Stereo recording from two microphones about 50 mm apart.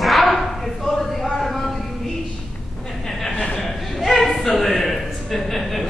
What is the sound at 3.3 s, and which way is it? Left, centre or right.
Chuckle, left.